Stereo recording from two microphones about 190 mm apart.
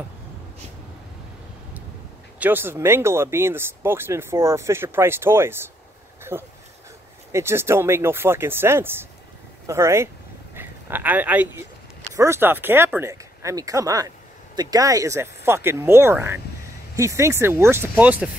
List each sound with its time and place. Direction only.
2.3 s speech: 10° right (ahead or behind)